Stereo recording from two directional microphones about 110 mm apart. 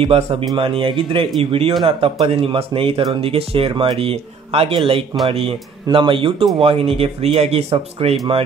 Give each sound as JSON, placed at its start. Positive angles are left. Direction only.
{"t": 0.0, "sound": "speech", "side_deg": -55}
{"t": 5.9, "sound": "speech", "side_deg": -50}